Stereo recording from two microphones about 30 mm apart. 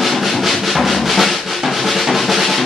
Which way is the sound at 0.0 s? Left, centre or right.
Centre.